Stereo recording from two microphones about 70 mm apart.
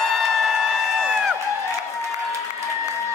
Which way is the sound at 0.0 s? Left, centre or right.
Centre.